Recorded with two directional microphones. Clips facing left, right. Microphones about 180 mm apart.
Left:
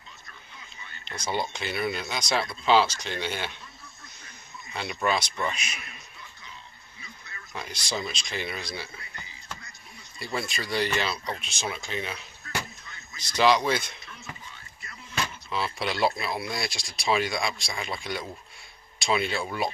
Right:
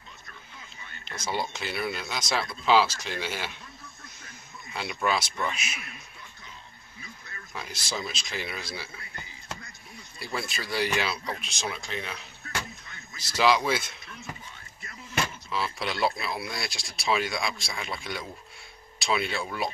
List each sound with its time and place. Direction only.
1.0 s speech: 5° right (ahead or behind)
4.7 s speech: 5° right (ahead or behind)
7.0 s a sound: 45° right (ahead or behind)
7.5 s speech: 5° right (ahead or behind)
10.1 s speech: centre (ahead or behind)
13.4 s speech: 5° right (ahead or behind)
15.5 s speech: centre (ahead or behind)